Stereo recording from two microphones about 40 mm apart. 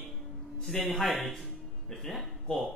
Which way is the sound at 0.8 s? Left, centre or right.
Centre.